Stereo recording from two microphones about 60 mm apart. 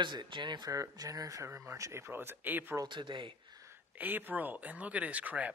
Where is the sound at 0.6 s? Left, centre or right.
Right.